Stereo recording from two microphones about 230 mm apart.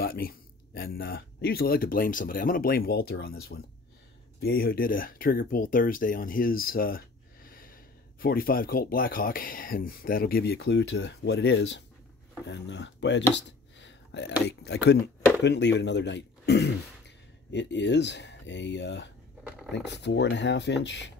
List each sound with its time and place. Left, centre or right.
0.0 s speech: left